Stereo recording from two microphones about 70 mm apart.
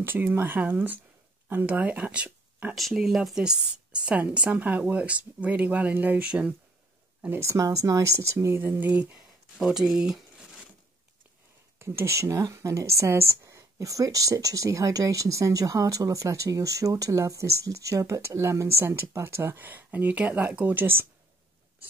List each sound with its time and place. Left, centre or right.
0.0 s speech: right
2.9 s speech: centre
7.2 s speech: right
7.4 s speech: right
8.7 s speech: right
9.6 s speech: centre
11.8 s speech: right